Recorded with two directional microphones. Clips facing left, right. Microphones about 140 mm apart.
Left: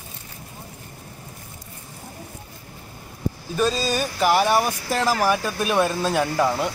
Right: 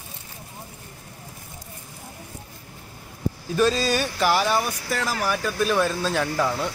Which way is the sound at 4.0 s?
5° left (ahead or behind).